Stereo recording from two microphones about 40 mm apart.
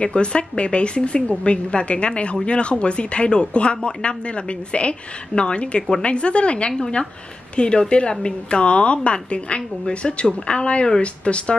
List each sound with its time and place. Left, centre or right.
0.0 s speech: left